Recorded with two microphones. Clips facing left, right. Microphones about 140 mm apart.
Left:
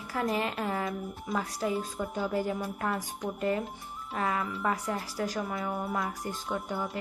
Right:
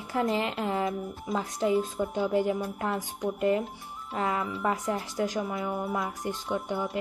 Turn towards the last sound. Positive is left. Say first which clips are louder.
# right 3 dB
turn(degrees=-20)  # may be behind; listen again after turning